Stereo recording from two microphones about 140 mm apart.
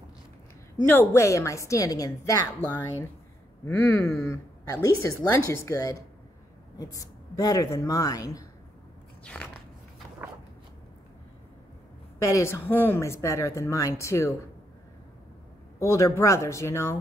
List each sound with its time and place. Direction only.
0.8 s a woman's voice: 15° left (ahead or behind)
9.2 s biting: 5° left (ahead or behind)
12.2 s a woman's voice: 20° left (ahead or behind)
15.8 s a woman's voice: 20° left (ahead or behind)